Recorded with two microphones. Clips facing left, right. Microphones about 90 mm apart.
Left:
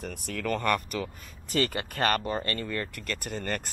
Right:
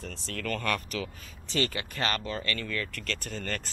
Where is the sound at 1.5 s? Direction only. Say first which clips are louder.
Left 2 dB; 55° left (ahead or behind).